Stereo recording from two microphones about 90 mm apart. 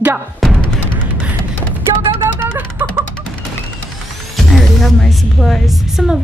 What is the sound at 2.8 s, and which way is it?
Music, 20° right (ahead or behind).